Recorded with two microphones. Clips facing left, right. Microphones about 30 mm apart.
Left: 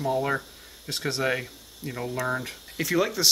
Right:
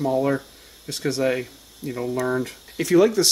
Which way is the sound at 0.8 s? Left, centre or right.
Left.